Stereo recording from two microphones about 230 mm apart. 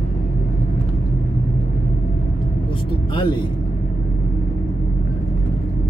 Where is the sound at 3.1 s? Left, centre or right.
Left.